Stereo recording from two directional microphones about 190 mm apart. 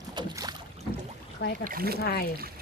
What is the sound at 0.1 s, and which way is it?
Boat, 20° right (ahead or behind).